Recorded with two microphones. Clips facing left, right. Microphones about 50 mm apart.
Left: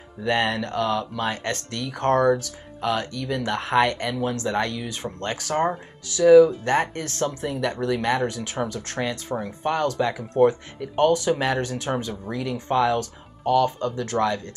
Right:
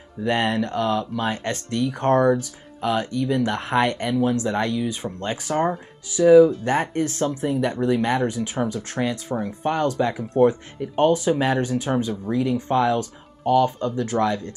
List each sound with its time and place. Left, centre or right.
0.2 s speech: centre
10.8 s speech: centre
11.2 s speech: centre